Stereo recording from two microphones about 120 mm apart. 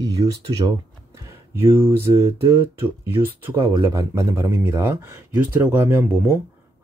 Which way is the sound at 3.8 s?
25° right (ahead or behind).